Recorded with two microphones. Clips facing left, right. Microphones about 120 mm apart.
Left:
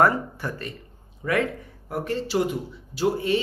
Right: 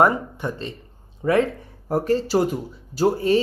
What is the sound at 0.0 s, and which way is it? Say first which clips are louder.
Speech: right 2 dB; 20° right (ahead or behind).